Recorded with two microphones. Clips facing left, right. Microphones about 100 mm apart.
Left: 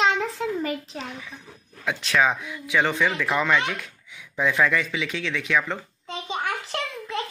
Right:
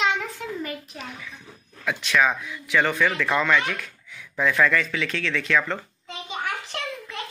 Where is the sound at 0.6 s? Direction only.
25° left (ahead or behind).